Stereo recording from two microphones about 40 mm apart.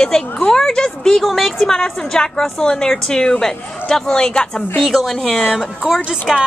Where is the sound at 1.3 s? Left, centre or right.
Centre.